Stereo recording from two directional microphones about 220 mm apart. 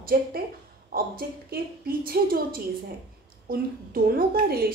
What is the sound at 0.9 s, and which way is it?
A woman's voice, 40° right (ahead or behind).